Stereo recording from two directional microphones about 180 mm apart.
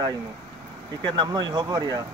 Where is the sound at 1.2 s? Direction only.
25° right (ahead or behind).